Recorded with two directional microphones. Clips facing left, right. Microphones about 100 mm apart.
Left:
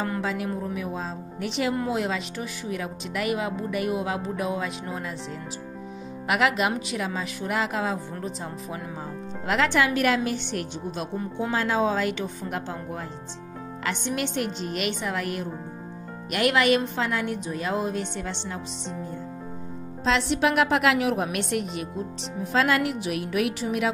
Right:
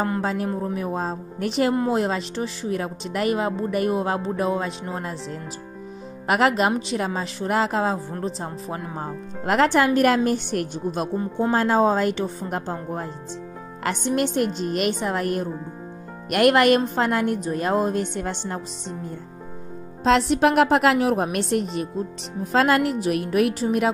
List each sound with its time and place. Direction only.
0.0 s speech: 35° right (ahead or behind)
6.2 s speech: 40° right (ahead or behind)
8.9 s speech: 50° right (ahead or behind)
11.1 s speech: 30° right (ahead or behind)
11.5 s speech: 45° right (ahead or behind)
16.3 s speech: 50° right (ahead or behind)
20.0 s speech: 45° right (ahead or behind)